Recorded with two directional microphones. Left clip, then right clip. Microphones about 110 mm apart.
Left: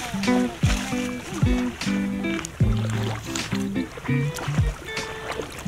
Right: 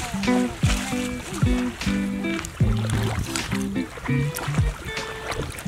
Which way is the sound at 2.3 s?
35° right (ahead or behind).